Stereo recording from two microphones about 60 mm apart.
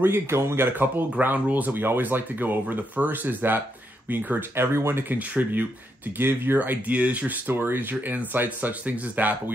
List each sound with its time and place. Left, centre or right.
0.0 s speech: right
6.9 s speech: right